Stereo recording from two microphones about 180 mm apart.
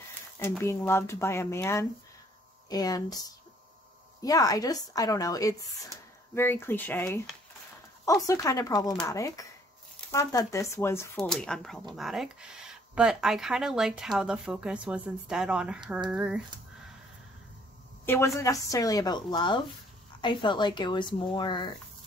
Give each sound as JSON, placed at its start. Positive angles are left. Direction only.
{"t": 0.4, "sound": "speech", "side_deg": 15}
{"t": 11.1, "sound": "speech", "side_deg": 5}
{"t": 18.0, "sound": "speech", "side_deg": 15}